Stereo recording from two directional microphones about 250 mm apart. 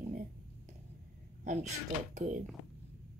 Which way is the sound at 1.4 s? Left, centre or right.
Right.